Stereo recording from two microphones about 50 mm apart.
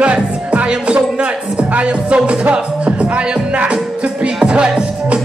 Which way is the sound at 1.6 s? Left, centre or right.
Right.